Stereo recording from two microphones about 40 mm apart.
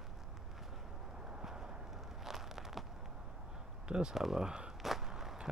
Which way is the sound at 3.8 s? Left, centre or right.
Right.